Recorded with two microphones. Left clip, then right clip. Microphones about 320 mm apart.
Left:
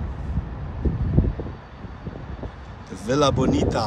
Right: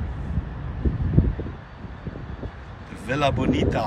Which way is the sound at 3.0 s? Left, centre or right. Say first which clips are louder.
Left 3 dB; centre.